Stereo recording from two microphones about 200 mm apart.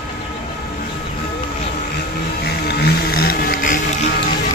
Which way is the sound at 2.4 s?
55° left (ahead or behind).